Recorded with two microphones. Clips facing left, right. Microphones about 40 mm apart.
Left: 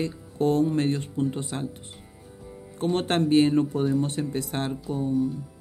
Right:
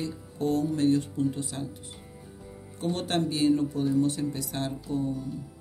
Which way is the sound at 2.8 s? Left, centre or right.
Left.